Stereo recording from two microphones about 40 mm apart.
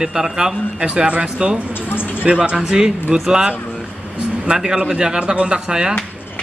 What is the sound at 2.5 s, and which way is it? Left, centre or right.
Speech, centre.